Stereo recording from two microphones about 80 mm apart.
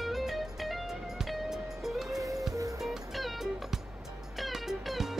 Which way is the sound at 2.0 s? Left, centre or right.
Right.